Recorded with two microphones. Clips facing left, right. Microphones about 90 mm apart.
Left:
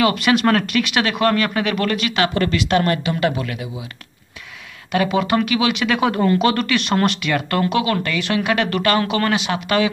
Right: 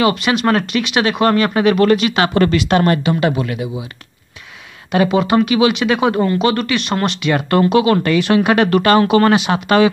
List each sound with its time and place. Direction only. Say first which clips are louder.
0.0 s speech: right 1 dB; 15° right (ahead or behind)
4.9 s speech: right 4 dB; 20° right (ahead or behind)
7.1 s speech: right 4 dB; 20° right (ahead or behind)